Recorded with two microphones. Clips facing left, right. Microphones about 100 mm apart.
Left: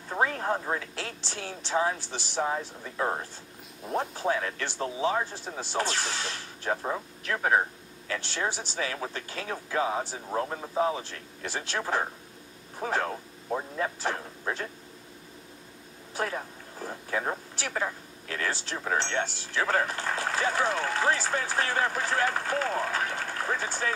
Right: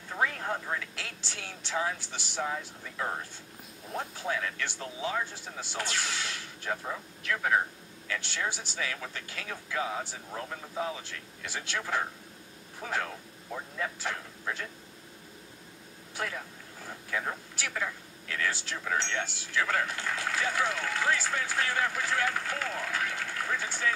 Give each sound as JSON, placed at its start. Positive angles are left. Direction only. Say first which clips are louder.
{"t": 0.1, "sound": "speech", "louder": "left 4 dB", "side_deg": 35}
{"t": 16.2, "sound": "speech", "louder": "left 5 dB", "side_deg": 40}